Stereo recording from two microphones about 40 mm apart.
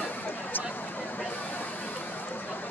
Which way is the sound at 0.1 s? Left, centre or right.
Left.